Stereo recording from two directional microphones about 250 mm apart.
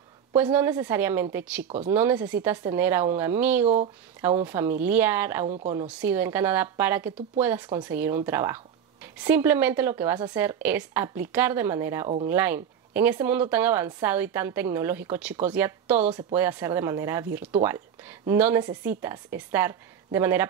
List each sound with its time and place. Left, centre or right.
0.4 s a woman's voice: centre
3.6 s a woman's voice: right
4.5 s a woman's voice: centre
5.5 s a woman's voice: right
5.9 s a woman's voice: centre